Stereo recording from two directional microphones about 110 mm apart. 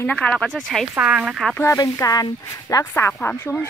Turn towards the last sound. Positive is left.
turn(degrees=20)  # may be behind; listen again after turning